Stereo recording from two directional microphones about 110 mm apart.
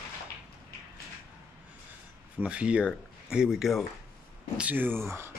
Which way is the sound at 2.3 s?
10° right (ahead or behind).